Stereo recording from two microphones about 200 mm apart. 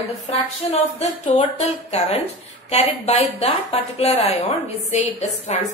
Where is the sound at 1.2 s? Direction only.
35° left (ahead or behind).